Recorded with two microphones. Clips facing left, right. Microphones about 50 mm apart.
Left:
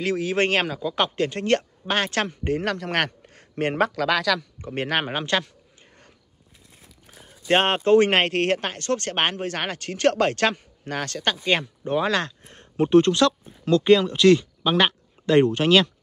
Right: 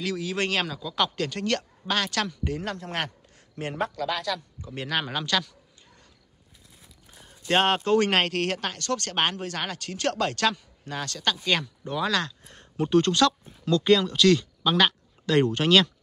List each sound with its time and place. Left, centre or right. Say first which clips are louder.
0.0 s a man's voice: left 6 dB; left
2.6 s a man's voice: left 7 dB; left
3.7 s speech: left 6 dB; left
4.6 s a man's voice: left 5 dB; left
7.2 s speech: left 2 dB; left
15.5 s speech: left 2 dB; centre